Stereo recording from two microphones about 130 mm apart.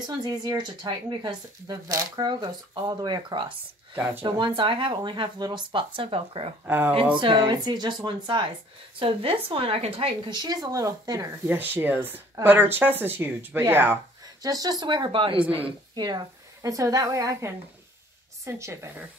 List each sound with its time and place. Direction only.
0.0 s speech: 35° right (ahead or behind)
6.6 s speech: 15° right (ahead or behind)
7.2 s speech: 40° right (ahead or behind)
11.4 s speech: 15° right (ahead or behind)
14.2 s a woman's voice: 30° right (ahead or behind)